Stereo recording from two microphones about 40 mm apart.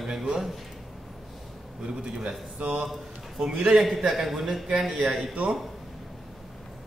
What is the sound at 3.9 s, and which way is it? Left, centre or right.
Speech, centre.